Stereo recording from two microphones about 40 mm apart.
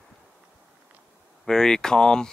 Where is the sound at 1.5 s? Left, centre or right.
Centre.